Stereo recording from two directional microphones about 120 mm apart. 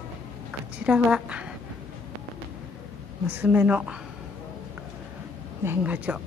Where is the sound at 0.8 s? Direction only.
10° right (ahead or behind).